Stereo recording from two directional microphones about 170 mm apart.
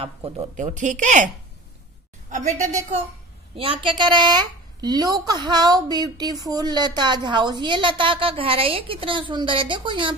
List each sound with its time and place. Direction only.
0.0 s speech: 35° right (ahead or behind)
0.6 s a woman's voice: 45° right (ahead or behind)
3.5 s a woman's voice: 30° right (ahead or behind)